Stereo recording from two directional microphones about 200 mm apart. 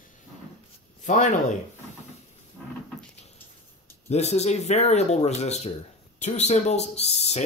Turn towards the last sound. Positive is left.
turn(degrees=35)  # may be behind; listen again after turning